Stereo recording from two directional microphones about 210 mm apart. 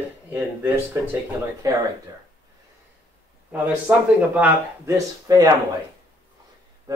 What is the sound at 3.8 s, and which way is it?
Speech, 10° right (ahead or behind).